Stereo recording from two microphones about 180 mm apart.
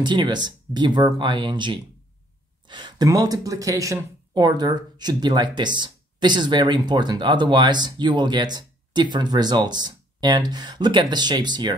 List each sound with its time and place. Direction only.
0.0 s speech: 25° right (ahead or behind)